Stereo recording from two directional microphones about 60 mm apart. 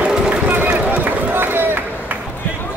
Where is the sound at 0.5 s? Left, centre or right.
Right.